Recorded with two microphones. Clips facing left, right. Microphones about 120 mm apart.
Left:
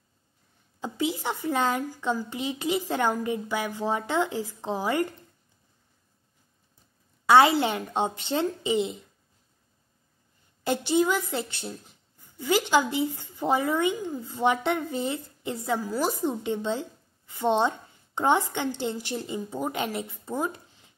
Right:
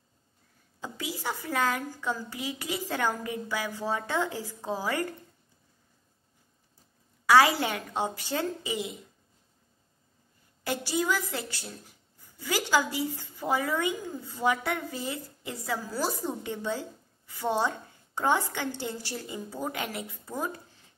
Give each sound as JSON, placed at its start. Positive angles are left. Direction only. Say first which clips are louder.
{"t": 0.7, "sound": "a woman's voice", "louder": "left 8 dB", "side_deg": 20}
{"t": 7.2, "sound": "a woman's voice", "louder": "left 3 dB", "side_deg": 25}
{"t": 10.6, "sound": "a woman's voice", "louder": "left 6 dB", "side_deg": 25}